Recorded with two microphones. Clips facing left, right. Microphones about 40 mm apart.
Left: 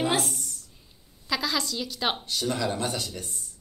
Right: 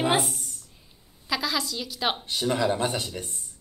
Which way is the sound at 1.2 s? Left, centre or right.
Centre.